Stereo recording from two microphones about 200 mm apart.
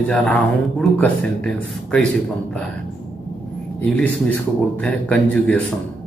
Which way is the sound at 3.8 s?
5° left (ahead or behind).